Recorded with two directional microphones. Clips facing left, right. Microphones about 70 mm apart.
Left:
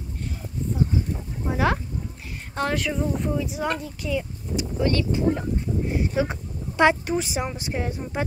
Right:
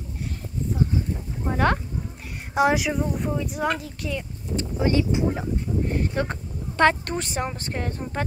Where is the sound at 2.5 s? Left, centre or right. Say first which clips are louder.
Right 5 dB; centre.